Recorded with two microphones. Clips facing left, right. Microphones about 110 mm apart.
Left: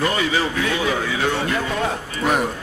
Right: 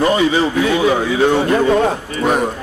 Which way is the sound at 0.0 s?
25° right (ahead or behind).